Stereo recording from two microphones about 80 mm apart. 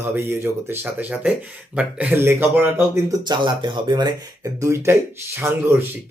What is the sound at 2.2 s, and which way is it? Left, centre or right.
Speech, right.